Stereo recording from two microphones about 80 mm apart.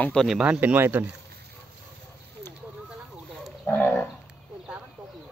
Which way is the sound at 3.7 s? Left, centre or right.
Left.